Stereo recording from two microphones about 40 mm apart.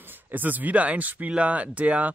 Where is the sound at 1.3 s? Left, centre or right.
Right.